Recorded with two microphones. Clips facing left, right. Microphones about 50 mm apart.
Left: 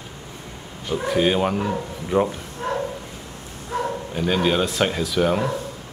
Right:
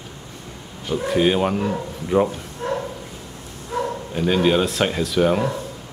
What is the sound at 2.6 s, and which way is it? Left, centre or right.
Bow-wow, left.